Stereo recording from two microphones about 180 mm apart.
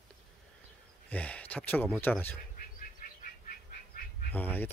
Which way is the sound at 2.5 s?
50° left (ahead or behind).